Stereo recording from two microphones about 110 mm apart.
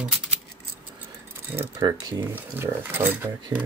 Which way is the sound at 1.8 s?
35° right (ahead or behind).